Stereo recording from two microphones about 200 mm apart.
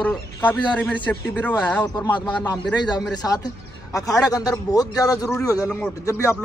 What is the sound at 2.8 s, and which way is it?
A man's voice, 20° left (ahead or behind).